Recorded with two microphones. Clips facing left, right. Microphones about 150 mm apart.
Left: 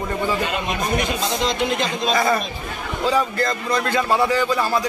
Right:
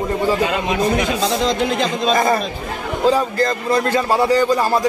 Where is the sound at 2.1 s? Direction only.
45° right (ahead or behind).